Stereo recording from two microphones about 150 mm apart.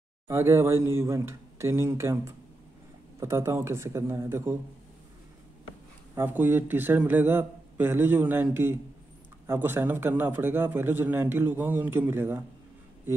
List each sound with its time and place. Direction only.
0.3 s a man's voice: 15° right (ahead or behind)
6.1 s a man's voice: 15° right (ahead or behind)